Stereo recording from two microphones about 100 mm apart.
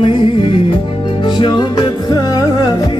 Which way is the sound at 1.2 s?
50° left (ahead or behind).